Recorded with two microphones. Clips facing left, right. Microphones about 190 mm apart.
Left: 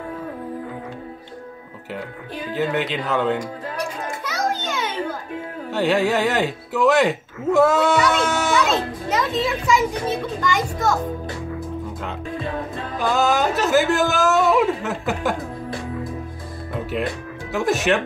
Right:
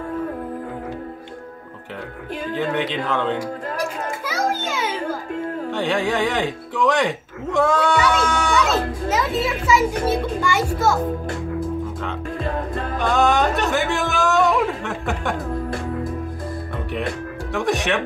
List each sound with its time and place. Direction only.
2.5 s speech: 5° left (ahead or behind)
4.3 s children playing: 10° right (ahead or behind)
5.7 s speech: 5° left (ahead or behind)
9.1 s a child's voice: 5° right (ahead or behind)
12.4 s music: 50° right (ahead or behind)
12.9 s speech: 5° left (ahead or behind)
17.5 s speech: centre (ahead or behind)